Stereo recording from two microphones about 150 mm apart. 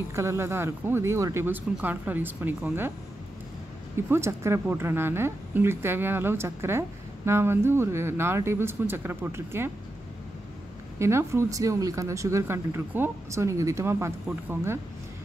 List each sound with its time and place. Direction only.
0.1 s speech: 20° right (ahead or behind)
3.9 s speech: 15° right (ahead or behind)
11.0 s speech: 20° right (ahead or behind)